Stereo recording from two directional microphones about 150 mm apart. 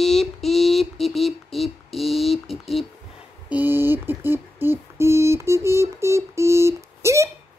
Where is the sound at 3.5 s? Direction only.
15° right (ahead or behind).